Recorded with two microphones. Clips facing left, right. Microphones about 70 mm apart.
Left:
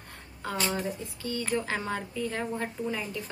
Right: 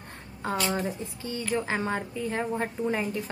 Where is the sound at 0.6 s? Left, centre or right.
Centre.